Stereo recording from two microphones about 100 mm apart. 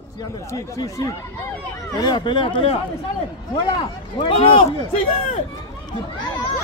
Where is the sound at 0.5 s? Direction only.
35° left (ahead or behind).